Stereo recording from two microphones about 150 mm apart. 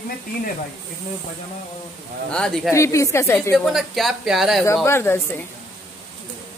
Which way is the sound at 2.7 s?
20° left (ahead or behind).